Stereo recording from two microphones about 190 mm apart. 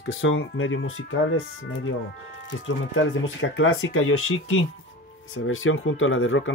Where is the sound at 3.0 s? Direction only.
90° left.